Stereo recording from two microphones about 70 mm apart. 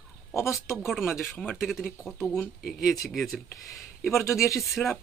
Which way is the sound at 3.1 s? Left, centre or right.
Centre.